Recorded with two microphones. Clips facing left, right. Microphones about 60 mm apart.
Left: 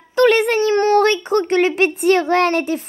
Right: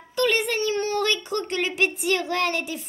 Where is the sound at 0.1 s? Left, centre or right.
Left.